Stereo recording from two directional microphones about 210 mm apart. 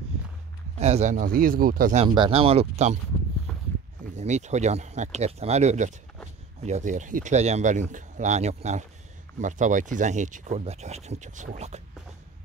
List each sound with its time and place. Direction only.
0.7 s speech: 30° right (ahead or behind)
2.0 s speech: 25° right (ahead or behind)
3.5 s a sound: 5° left (ahead or behind)
4.0 s speech: 35° right (ahead or behind)